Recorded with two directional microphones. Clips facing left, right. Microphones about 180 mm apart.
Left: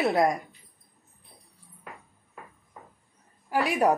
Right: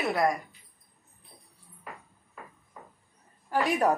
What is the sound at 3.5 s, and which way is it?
Speech, 10° left (ahead or behind).